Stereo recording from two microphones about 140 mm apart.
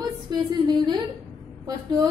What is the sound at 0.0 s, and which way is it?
A woman's voice, 30° right (ahead or behind).